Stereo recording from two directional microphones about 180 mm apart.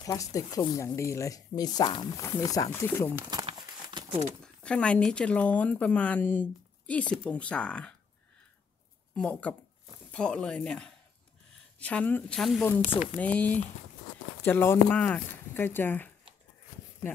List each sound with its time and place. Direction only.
0.0 s speech: 20° left (ahead or behind)
3.2 s crumpling: 20° right (ahead or behind)
4.4 s speech: 5° left (ahead or behind)
9.1 s speech: 5° left (ahead or behind)
12.8 s speech: 40° left (ahead or behind)
13.2 s speech: 10° left (ahead or behind)